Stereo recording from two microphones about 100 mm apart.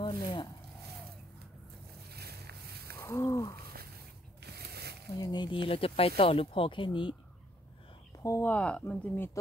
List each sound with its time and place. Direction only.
0.0 s speech: 50° left (ahead or behind)
3.0 s a sound: 30° left (ahead or behind)
5.1 s speech: 45° left (ahead or behind)
8.4 s speech: 15° left (ahead or behind)